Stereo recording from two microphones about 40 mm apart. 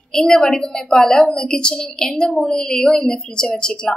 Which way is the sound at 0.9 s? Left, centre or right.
Centre.